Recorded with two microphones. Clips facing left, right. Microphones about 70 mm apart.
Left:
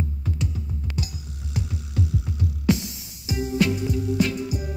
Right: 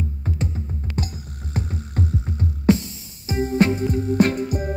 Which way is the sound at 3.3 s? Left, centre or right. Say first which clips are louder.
Right 4 dB; right.